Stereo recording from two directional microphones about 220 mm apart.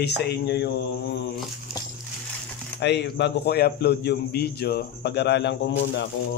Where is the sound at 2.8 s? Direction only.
50° left (ahead or behind).